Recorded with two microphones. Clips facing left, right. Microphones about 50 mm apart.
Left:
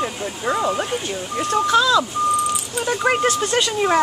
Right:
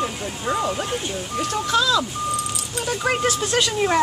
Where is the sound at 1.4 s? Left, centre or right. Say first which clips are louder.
Left 4 dB; centre.